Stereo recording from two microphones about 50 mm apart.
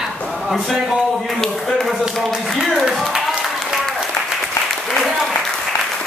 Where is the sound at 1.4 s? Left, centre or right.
Centre.